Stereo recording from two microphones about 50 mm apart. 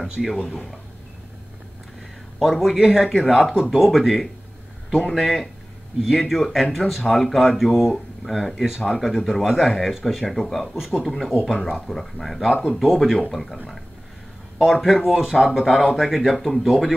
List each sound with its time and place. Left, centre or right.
0.2 s speech: centre
2.3 s speech: centre
14.6 s speech: centre